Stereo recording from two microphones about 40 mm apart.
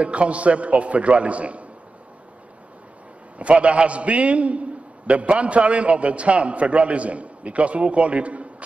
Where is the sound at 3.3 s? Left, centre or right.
Right.